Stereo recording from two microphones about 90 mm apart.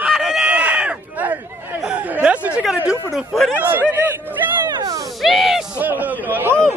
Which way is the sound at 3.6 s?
20° right (ahead or behind).